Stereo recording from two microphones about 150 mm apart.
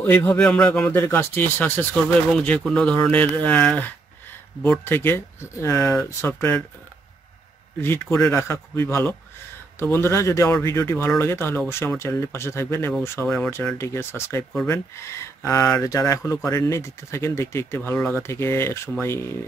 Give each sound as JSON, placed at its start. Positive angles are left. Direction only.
{"t": 0.0, "sound": "speech", "side_deg": 10}
{"t": 7.8, "sound": "speech", "side_deg": 15}